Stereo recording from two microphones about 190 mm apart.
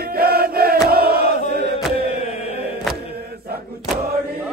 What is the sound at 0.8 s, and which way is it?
Crowd, 55° right (ahead or behind).